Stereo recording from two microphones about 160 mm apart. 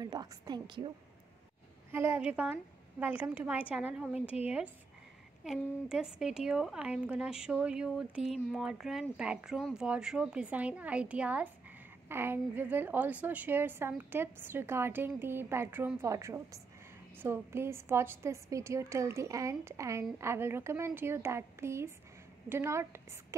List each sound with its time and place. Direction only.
0.0 s a woman's voice: 25° right (ahead or behind)
1.9 s a woman's voice: 15° right (ahead or behind)
5.4 s a woman's voice: 5° right (ahead or behind)